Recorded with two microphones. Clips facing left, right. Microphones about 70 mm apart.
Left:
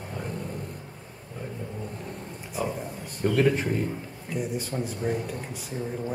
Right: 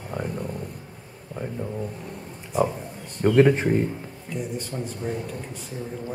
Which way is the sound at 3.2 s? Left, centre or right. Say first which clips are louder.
Right 5 dB; right.